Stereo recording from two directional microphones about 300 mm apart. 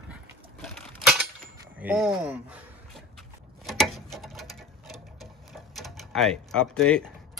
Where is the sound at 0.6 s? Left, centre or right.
Centre.